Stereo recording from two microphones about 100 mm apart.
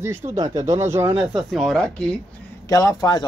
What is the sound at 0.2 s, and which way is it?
Speech, 90° right.